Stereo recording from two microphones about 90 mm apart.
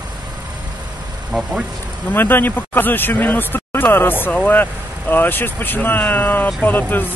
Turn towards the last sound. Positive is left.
turn(degrees=20)  # may be behind; listen again after turning